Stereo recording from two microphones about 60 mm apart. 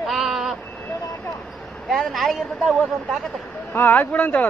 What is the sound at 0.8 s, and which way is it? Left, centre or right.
Speech, left.